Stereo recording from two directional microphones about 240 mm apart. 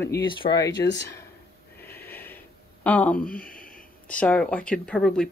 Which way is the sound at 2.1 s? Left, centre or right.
Centre.